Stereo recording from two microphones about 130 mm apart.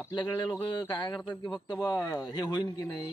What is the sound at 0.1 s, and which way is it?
Speech, 35° left (ahead or behind).